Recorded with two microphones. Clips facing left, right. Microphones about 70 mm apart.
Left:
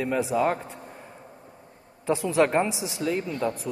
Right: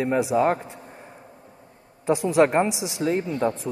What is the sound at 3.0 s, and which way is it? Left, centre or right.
Speech, right.